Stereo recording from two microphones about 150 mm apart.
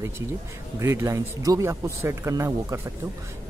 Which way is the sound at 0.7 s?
20° right (ahead or behind).